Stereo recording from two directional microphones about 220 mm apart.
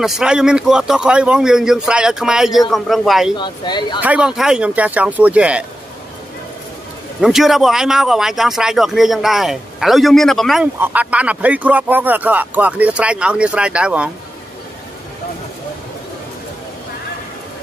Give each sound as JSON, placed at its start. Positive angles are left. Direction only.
{"t": 0.0, "sound": "speech", "side_deg": -5}
{"t": 3.3, "sound": "speech", "side_deg": 20}
{"t": 4.0, "sound": "speech", "side_deg": -5}
{"t": 7.2, "sound": "speech", "side_deg": 0}